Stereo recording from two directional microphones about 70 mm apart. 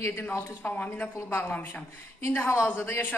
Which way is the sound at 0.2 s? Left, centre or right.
Left.